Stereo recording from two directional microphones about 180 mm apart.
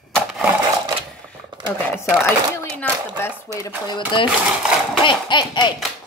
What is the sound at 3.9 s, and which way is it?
Speech, 25° left (ahead or behind).